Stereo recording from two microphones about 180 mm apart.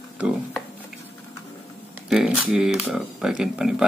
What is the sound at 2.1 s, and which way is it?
Speech, 5° right (ahead or behind).